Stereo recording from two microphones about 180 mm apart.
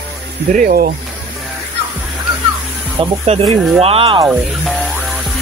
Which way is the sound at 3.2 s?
35° right (ahead or behind).